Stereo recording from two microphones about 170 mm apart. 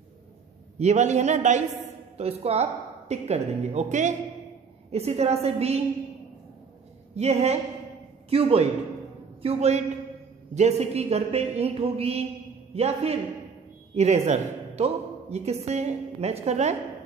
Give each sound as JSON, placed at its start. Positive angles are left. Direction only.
{"t": 0.7, "sound": "a man's voice", "side_deg": -40}
{"t": 7.2, "sound": "speech", "side_deg": -40}